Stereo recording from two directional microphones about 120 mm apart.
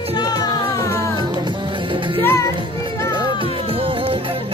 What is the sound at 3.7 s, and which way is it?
Music, 50° right (ahead or behind).